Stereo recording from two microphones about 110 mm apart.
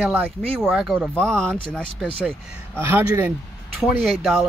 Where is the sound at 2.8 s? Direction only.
20° right (ahead or behind).